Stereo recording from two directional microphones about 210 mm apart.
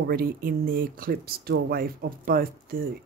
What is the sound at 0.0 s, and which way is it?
Speech, 45° right (ahead or behind).